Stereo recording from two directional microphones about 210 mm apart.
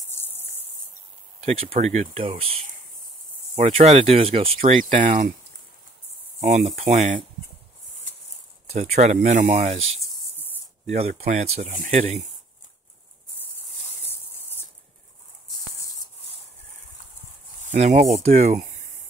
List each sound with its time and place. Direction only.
0.1 s cricket: 10° left (ahead or behind)
1.4 s speech: 30° right (ahead or behind)
6.4 s speech: 35° right (ahead or behind)
8.6 s speech: 30° right (ahead or behind)
14.0 s a sound: 10° left (ahead or behind)
17.6 s speech: 35° right (ahead or behind)